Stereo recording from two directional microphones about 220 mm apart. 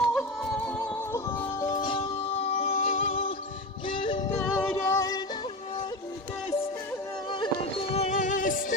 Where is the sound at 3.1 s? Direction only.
25° left (ahead or behind).